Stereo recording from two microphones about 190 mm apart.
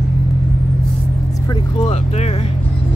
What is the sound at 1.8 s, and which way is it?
Speech, 35° left (ahead or behind).